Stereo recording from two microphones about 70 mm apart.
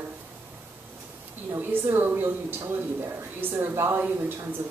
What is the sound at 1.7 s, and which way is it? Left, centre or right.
Speech, right.